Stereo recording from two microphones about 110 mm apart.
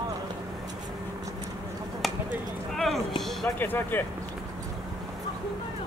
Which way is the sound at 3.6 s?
15° left (ahead or behind).